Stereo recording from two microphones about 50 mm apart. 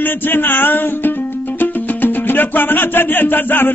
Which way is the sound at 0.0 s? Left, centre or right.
Left.